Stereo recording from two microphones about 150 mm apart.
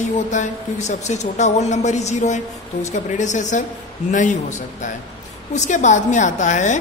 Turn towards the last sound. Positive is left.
turn(degrees=55)  # may be behind; listen again after turning